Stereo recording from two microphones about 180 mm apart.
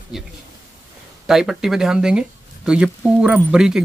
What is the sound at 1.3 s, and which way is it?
Speech, centre (ahead or behind).